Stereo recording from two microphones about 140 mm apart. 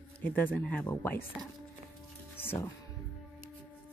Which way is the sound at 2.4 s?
15° left (ahead or behind).